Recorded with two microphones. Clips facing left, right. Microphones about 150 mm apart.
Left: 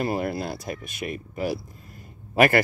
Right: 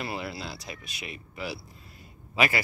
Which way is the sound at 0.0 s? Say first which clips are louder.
Left 8 dB; 50° left (ahead or behind).